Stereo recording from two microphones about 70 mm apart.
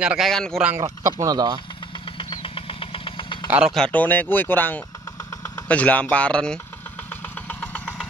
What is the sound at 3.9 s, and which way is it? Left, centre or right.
Speech, left.